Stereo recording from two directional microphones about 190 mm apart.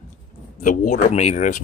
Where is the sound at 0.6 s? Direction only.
45° left (ahead or behind).